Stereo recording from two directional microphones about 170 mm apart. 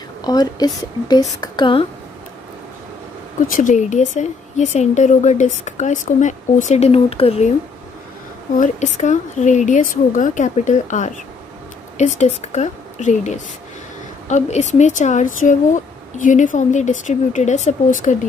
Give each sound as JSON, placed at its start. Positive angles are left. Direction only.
{"t": 0.2, "sound": "speech", "side_deg": 25}
{"t": 3.4, "sound": "a woman's voice", "side_deg": 50}
{"t": 8.5, "sound": "a woman's voice", "side_deg": 45}